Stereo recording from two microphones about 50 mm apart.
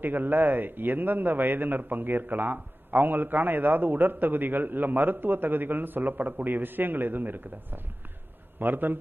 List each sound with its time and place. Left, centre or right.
0.0 s a man's voice: right